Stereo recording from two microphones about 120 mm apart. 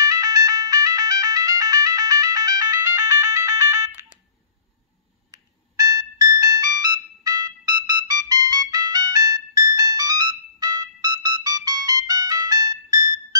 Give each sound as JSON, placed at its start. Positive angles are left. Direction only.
{"t": 0.0, "sound": "music", "side_deg": -30}
{"t": 5.3, "sound": "ringtone", "side_deg": -30}